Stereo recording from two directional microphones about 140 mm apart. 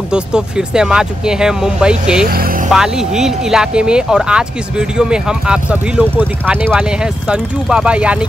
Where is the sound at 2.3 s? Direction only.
90° right.